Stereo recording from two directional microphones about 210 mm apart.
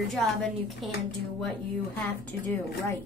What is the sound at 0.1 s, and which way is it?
Speech, centre (ahead or behind).